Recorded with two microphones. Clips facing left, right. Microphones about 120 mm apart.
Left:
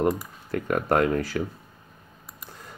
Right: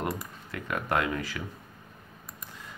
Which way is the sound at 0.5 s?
40° left (ahead or behind).